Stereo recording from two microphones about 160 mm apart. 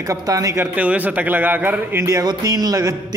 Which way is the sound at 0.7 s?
10° right (ahead or behind).